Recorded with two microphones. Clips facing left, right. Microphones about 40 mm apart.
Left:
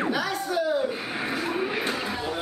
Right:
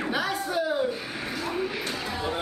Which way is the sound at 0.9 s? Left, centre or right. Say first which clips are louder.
Left 3 dB; left.